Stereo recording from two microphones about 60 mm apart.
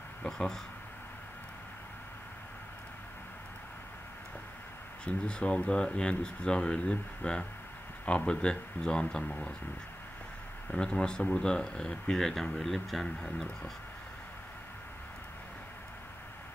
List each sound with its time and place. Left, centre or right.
0.2 s speech: centre
5.0 s speech: centre
10.7 s speech: centre